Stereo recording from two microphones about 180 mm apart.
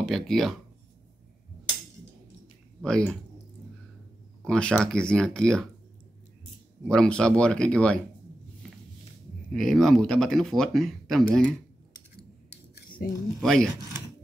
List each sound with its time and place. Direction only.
0.0 s speech: centre (ahead or behind)
2.8 s speech: 5° left (ahead or behind)
4.5 s speech: 5° left (ahead or behind)
6.9 s speech: 5° left (ahead or behind)
9.5 s speech: centre (ahead or behind)
13.0 s speech: 55° left (ahead or behind)
13.4 s speech: centre (ahead or behind)